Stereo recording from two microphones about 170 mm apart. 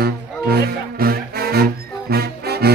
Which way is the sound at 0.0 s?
65° right (ahead or behind).